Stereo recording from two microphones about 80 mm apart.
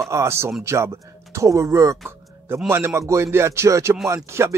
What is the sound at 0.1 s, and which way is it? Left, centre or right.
Speech, right.